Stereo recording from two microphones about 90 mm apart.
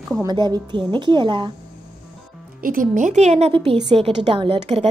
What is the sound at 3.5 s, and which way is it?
A woman's voice, 75° right (ahead or behind).